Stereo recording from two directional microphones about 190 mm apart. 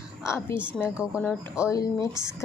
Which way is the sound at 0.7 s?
5° right (ahead or behind).